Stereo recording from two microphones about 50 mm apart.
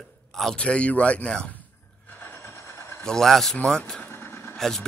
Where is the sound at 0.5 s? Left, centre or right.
Left.